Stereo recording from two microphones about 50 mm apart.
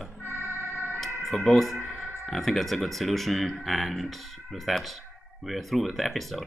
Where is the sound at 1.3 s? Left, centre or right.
Centre.